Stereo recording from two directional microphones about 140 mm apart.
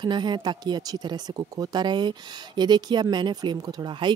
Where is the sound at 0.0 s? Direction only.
35° right (ahead or behind).